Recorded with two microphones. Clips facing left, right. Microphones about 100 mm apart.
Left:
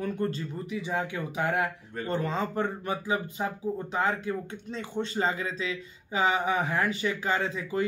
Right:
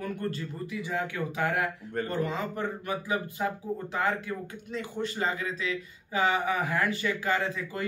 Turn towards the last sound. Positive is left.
turn(degrees=20)  # may be behind; listen again after turning